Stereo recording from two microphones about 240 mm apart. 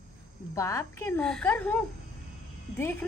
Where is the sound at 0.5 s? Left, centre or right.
Centre.